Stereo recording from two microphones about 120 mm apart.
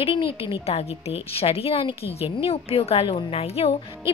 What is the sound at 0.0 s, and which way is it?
A woman's voice, 45° left (ahead or behind).